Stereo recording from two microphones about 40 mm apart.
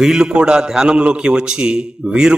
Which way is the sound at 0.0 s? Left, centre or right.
Centre.